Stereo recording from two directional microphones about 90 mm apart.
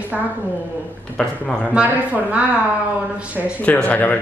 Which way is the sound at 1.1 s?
10° left (ahead or behind).